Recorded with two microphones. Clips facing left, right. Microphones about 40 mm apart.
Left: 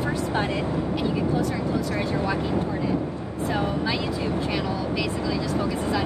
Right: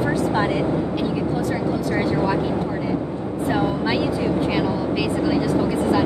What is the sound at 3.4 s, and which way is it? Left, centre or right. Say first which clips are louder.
Speech: right 4 dB; right.